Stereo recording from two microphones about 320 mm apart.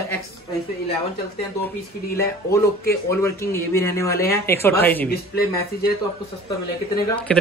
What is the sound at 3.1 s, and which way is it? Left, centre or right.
A man's voice, centre.